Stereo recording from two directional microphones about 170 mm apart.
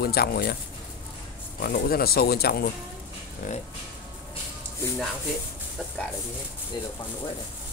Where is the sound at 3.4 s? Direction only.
50° left (ahead or behind).